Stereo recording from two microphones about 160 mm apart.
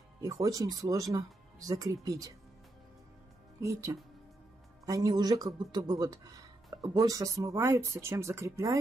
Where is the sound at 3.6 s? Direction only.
20° right (ahead or behind).